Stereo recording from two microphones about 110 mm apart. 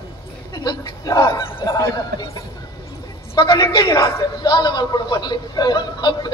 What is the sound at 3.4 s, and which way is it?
A man's voice, 45° left (ahead or behind).